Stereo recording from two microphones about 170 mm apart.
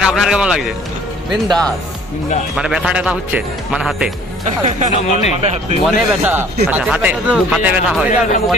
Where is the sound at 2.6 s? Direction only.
5° right (ahead or behind).